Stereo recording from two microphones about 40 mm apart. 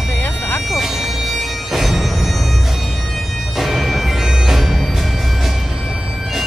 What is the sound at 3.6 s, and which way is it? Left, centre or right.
Bagpipes, centre.